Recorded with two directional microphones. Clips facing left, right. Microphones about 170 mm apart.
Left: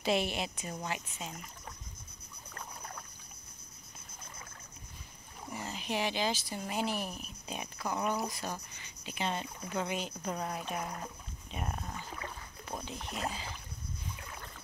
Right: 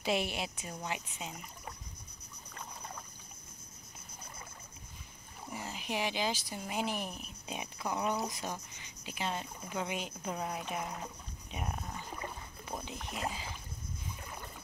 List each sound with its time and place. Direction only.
0.0 s speech: 10° right (ahead or behind)
5.5 s speech: 10° right (ahead or behind)
7.9 s speech: centre (ahead or behind)
11.5 s rowboat: 10° right (ahead or behind)
12.9 s speech: centre (ahead or behind)
14.2 s boat: 10° right (ahead or behind)